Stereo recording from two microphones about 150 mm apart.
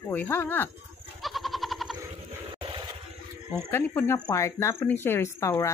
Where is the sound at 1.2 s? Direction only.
Centre (ahead or behind).